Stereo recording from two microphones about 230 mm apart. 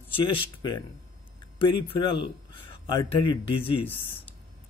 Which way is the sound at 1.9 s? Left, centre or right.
Left.